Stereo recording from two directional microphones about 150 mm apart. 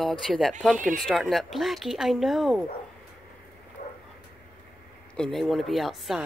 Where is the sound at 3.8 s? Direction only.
55° left (ahead or behind).